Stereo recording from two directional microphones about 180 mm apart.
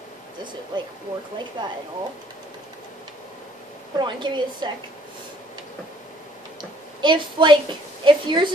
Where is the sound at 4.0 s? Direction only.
25° right (ahead or behind).